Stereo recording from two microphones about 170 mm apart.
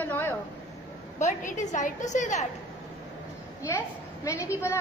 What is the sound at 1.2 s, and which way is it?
A woman's voice, 45° left (ahead or behind).